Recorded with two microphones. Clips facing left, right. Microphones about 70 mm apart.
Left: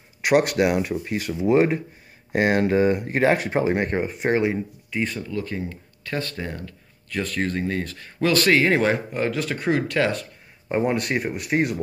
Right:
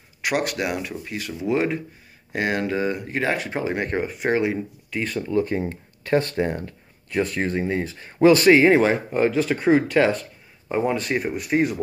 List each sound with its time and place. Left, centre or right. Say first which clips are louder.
0.3 s speech: left 6 dB; left
1.5 s speech: left 4 dB; left
2.3 s speech: left 4 dB; left
3.9 s speech: even; centre
5.2 s speech: right 6 dB; right; by 10.2 s centre
10.7 s speech: even; centre
11.1 s speech: right 1 dB; centre